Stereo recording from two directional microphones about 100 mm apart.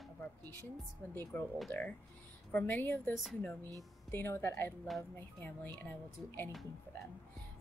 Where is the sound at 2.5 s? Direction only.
15° left (ahead or behind).